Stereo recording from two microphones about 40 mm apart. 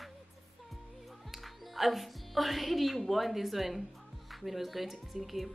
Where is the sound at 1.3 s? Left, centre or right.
Centre.